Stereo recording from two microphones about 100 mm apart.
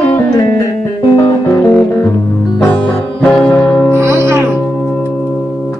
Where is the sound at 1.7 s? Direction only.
20° left (ahead or behind).